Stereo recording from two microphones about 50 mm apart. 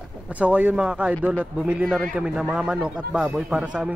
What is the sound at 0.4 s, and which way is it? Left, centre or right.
A man's voice, right.